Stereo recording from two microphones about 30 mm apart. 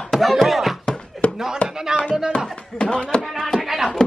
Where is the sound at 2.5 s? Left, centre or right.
Left.